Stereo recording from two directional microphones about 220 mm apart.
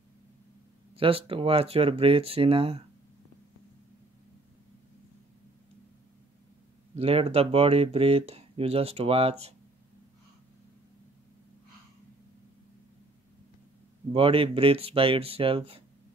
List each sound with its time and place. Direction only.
0.9 s speech: 25° right (ahead or behind)
7.0 s speech: 25° right (ahead or behind)
14.1 s speech: 25° right (ahead or behind)